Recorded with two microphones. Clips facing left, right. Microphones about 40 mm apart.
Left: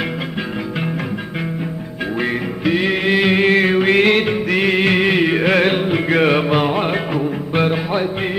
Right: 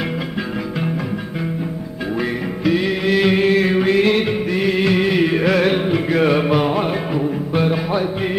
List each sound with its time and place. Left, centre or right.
2.1 s music: left
3.4 s music: left